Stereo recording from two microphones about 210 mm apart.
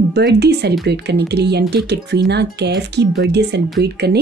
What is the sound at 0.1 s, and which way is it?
Speech, 50° right (ahead or behind).